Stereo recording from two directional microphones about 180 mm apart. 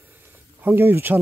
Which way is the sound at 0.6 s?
10° right (ahead or behind).